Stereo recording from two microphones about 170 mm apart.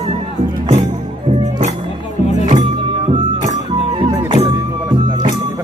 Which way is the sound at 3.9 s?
30° right (ahead or behind).